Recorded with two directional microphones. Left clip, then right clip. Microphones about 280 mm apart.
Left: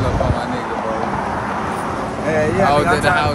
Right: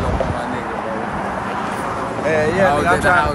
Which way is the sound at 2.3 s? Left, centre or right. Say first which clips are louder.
Even; right.